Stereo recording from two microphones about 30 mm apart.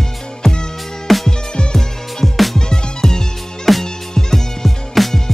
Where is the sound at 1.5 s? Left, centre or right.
Left.